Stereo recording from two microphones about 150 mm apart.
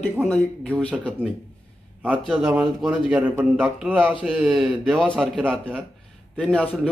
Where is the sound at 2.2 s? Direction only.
5° right (ahead or behind).